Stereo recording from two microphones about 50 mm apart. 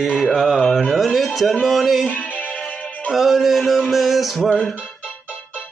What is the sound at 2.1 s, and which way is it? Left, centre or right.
Music, left.